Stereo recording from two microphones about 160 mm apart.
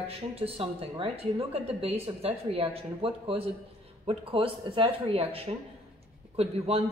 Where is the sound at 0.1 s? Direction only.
40° right (ahead or behind).